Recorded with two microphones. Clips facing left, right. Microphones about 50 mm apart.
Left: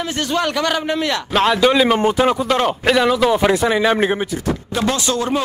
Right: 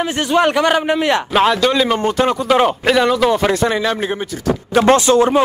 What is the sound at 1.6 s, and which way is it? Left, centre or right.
A man's voice, centre.